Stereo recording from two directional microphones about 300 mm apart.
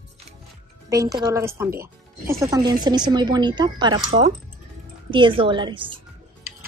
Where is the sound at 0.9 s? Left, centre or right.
Centre.